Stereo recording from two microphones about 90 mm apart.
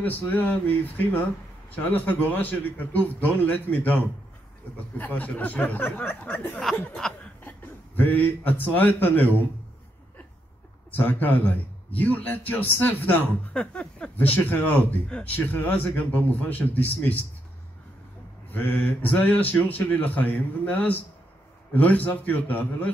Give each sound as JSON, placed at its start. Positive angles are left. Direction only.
{"t": 0.0, "sound": "a man's voice", "side_deg": 20}
{"t": 4.9, "sound": "a man's voice", "side_deg": 20}
{"t": 7.0, "sound": "chuckle", "side_deg": 5}
{"t": 7.4, "sound": "a man's voice", "side_deg": 20}
{"t": 10.9, "sound": "a man's voice", "side_deg": 20}
{"t": 18.5, "sound": "a man's voice", "side_deg": 20}